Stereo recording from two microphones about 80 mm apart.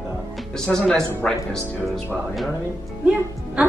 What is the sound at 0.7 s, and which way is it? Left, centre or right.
Speech, centre.